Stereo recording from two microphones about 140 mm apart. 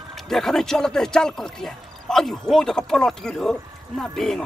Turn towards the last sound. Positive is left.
turn(degrees=5)  # may be behind; listen again after turning